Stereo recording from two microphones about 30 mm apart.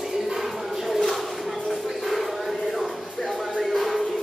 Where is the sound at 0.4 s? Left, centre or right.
Centre.